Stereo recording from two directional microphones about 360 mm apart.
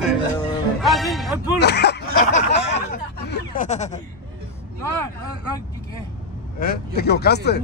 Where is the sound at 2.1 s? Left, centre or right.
Centre.